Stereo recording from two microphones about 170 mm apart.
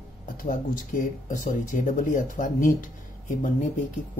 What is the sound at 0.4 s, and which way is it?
Speech, 55° left (ahead or behind).